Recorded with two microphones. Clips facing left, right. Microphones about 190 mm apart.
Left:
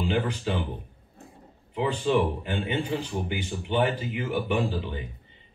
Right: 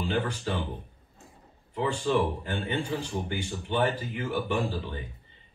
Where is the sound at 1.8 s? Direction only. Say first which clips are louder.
Left 2 dB; 15° left (ahead or behind).